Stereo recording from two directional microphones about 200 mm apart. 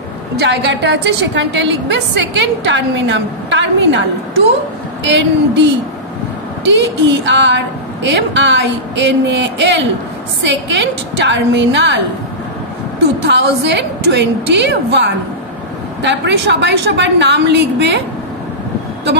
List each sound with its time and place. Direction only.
0.4 s a woman's voice: 60° right (ahead or behind)
5.0 s a woman's voice: 60° right (ahead or behind)
13.3 s a woman's voice: 60° right (ahead or behind)